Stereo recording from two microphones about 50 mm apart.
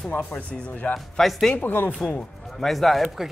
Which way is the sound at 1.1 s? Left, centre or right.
Centre.